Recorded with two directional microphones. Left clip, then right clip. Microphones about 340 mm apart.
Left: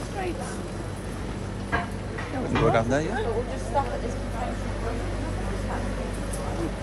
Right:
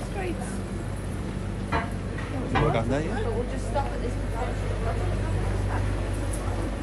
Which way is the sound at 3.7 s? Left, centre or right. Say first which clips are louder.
Left 3 dB; left.